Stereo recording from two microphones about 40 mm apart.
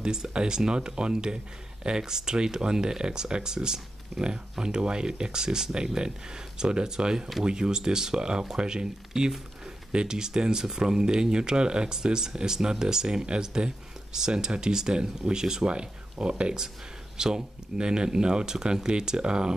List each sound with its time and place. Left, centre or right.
0.0 s speech: centre